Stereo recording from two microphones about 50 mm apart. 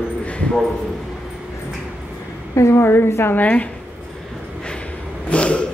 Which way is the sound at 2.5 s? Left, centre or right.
Left.